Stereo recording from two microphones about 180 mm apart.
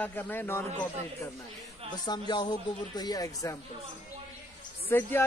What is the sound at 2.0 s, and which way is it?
Speech, 25° left (ahead or behind).